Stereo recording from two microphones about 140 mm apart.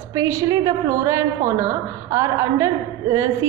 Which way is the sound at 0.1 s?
20° right (ahead or behind).